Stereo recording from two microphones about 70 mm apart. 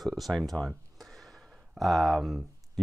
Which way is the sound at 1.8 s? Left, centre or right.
Centre.